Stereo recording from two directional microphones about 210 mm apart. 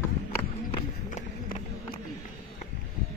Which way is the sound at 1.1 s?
35° left (ahead or behind).